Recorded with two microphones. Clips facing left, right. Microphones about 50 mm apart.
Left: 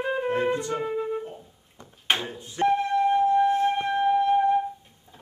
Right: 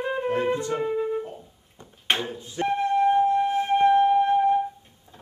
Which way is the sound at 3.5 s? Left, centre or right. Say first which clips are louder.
Right 5 dB; centre.